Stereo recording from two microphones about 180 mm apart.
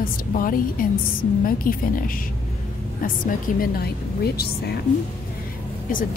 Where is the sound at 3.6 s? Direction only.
60° left (ahead or behind).